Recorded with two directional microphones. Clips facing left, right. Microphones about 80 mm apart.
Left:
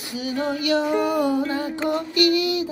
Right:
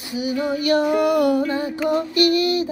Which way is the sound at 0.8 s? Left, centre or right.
Right.